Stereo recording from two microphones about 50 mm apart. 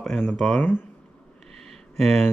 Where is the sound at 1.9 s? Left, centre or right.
Centre.